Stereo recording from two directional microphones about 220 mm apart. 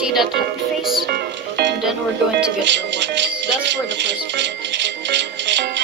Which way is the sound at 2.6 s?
55° right (ahead or behind).